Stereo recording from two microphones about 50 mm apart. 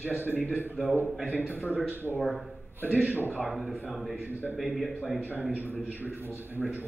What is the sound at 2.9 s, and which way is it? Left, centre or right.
Speech, right.